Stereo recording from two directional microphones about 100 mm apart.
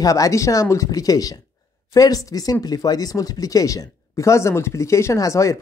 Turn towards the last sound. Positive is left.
turn(degrees=30)  # may be behind; listen again after turning